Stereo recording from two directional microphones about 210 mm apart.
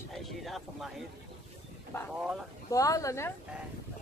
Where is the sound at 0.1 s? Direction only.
Centre (ahead or behind).